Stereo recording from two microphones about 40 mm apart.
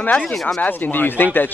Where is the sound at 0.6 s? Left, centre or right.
Left.